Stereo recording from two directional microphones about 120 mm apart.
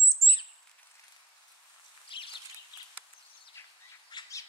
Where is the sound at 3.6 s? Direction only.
20° left (ahead or behind).